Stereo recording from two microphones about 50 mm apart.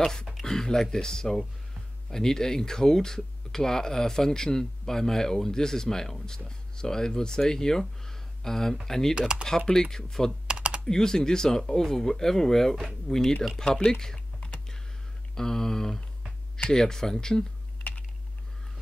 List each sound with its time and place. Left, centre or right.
0.0 s speech: centre
10.4 s typing: right
10.9 s speech: centre
14.4 s computer keyboard: centre
15.3 s speech: centre